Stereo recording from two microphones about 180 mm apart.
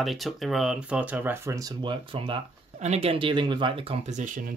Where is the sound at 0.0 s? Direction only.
Centre (ahead or behind).